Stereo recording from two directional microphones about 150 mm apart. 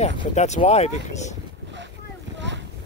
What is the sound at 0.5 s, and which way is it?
Speech, 45° left (ahead or behind).